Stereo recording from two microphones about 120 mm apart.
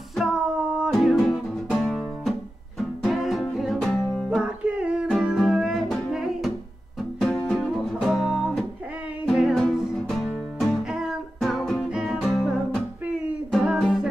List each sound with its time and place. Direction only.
0.1 s music: 5° right (ahead or behind)
4.4 s music: 10° right (ahead or behind)